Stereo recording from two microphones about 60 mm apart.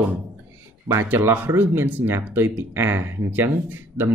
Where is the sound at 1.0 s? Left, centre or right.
Right.